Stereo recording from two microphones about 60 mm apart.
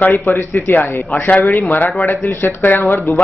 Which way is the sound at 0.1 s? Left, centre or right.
Left.